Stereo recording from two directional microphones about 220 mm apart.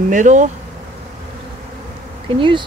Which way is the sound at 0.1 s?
35° right (ahead or behind).